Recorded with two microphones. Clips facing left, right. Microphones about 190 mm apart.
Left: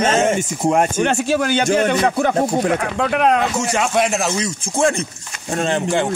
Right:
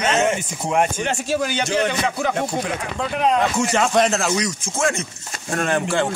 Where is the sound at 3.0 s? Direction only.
65° left (ahead or behind).